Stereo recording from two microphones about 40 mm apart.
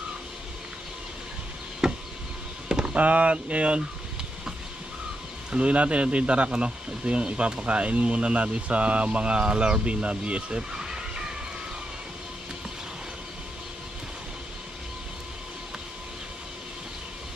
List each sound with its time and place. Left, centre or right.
1.8 s knock: centre
2.7 s vehicle: right
3.0 s speech: right
5.5 s speech: right